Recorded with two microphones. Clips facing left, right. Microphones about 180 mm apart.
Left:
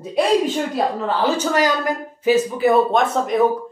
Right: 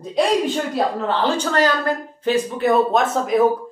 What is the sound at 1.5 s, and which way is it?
Speech, 10° left (ahead or behind).